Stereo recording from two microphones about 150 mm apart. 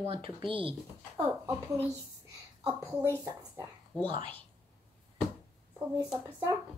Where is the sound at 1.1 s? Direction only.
20° right (ahead or behind).